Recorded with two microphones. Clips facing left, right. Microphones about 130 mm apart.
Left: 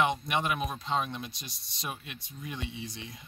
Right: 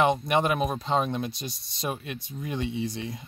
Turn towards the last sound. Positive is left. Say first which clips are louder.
# right 10 dB
turn(degrees=-40)  # may be behind; listen again after turning